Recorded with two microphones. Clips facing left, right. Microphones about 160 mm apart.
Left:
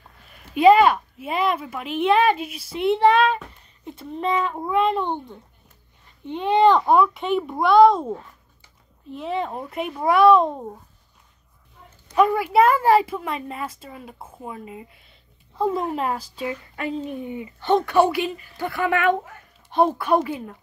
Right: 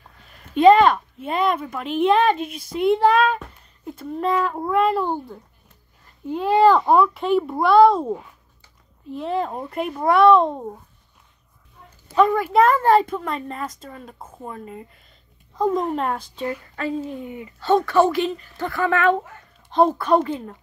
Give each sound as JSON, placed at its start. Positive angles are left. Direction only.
{"t": 0.6, "sound": "speech", "side_deg": 10}
{"t": 12.2, "sound": "speech", "side_deg": 10}